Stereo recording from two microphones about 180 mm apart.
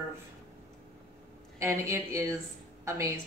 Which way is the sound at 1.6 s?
15° right (ahead or behind).